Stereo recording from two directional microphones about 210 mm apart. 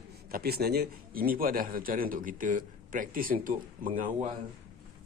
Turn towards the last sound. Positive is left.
turn(degrees=-40)  # may be behind; listen again after turning